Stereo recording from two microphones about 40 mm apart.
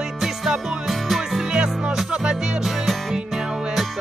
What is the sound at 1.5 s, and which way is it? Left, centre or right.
Music, centre.